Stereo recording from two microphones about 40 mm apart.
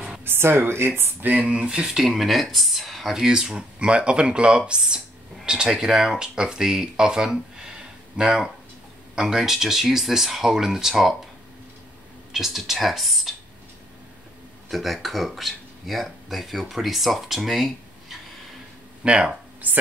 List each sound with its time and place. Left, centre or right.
0.2 s speech: right
1.4 s speech: right; by 3.2 s centre
3.2 s speech: centre
3.8 s speech: right; by 11.1 s centre
12.3 s speech: centre
14.7 s speech: centre
17.5 s a sound: centre
19.0 s speech: right